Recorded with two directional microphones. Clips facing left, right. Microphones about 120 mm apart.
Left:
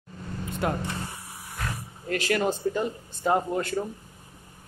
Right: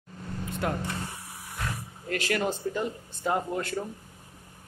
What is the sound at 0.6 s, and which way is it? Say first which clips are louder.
Speech: left 2 dB; 20° left (ahead or behind).